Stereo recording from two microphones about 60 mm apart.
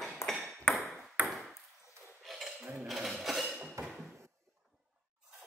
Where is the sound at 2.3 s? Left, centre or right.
Centre.